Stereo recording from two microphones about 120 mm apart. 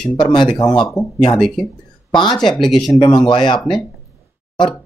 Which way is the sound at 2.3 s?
5° left (ahead or behind).